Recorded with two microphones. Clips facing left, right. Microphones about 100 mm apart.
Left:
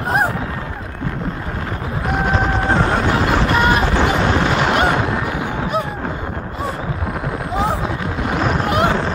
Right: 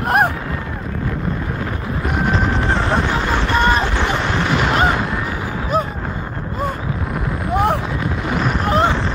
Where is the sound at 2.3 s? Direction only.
15° left (ahead or behind).